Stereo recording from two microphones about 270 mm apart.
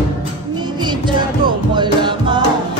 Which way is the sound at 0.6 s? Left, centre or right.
Centre.